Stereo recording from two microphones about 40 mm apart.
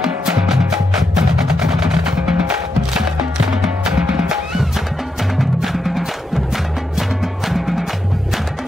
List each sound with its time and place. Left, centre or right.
0.0 s music: centre
5.4 s music: centre